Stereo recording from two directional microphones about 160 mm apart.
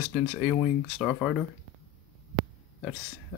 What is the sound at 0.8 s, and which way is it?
Speech, 5° right (ahead or behind).